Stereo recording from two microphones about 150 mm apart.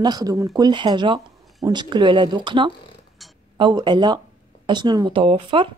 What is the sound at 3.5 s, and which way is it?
Speech, 30° right (ahead or behind).